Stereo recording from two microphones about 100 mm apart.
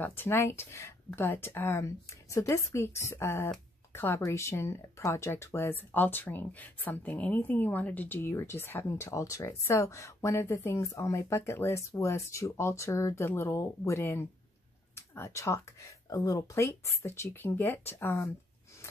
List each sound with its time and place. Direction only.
0.0 s speech: 20° left (ahead or behind)